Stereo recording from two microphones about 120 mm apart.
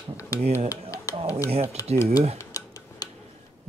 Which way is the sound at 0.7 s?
25° left (ahead or behind).